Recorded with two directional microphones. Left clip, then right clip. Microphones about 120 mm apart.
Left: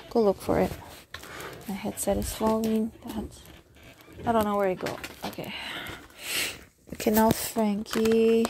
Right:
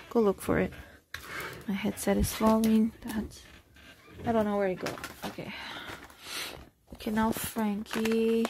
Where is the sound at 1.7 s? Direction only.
60° right (ahead or behind); by 2.4 s 90° right.